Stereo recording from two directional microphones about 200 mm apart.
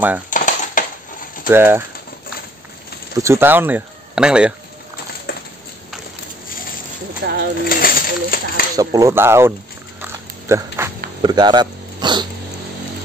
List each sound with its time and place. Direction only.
0.3 s a sound: 40° left (ahead or behind)
1.5 s speech: 10° right (ahead or behind)
3.2 s speech: 10° right (ahead or behind)
7.2 s speech: 55° right (ahead or behind)
7.6 s speech: 45° left (ahead or behind)
8.7 s speech: 15° right (ahead or behind)
10.0 s dog: 15° right (ahead or behind)
11.2 s speech: 20° right (ahead or behind)